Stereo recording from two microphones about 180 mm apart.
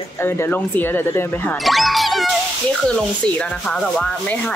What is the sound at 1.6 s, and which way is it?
A woman's voice, centre (ahead or behind).